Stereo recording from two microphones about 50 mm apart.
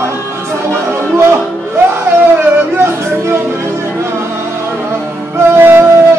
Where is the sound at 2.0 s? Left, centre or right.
Right.